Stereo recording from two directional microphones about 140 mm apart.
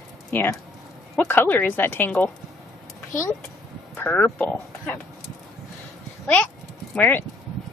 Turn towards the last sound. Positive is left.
turn(degrees=15)  # may be behind; listen again after turning